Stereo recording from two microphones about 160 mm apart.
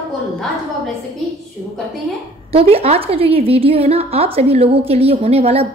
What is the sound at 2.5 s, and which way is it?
A woman's voice, 40° right (ahead or behind).